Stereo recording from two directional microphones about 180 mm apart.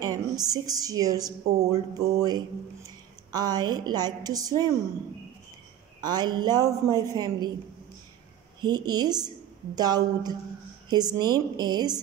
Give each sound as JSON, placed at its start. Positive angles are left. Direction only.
{"t": 0.0, "sound": "speech", "side_deg": -20}
{"t": 5.9, "sound": "speech", "side_deg": -20}
{"t": 8.5, "sound": "speech", "side_deg": -25}